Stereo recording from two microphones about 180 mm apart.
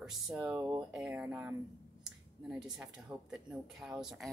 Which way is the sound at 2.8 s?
5° right (ahead or behind).